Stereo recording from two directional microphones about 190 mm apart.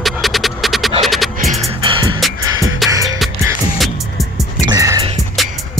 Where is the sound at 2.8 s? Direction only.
Centre (ahead or behind).